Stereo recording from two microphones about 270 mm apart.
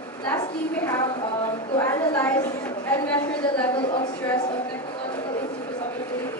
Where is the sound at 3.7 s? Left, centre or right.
Centre.